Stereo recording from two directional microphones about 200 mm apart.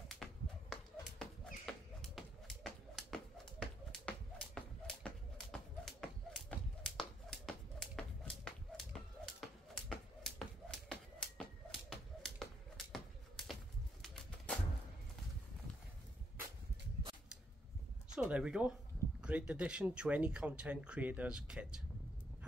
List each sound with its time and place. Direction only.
0.2 s a sound: centre (ahead or behind)
14.0 s bird: 5° left (ahead or behind)
18.1 s speech: 5° right (ahead or behind)